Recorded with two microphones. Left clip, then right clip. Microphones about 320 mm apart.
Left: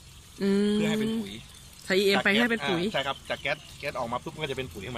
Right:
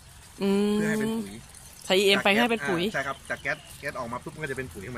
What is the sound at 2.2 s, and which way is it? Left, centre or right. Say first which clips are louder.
Speech: right 2 dB; centre.